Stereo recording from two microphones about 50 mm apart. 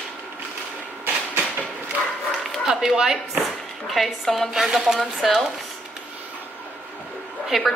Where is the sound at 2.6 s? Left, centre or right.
Centre.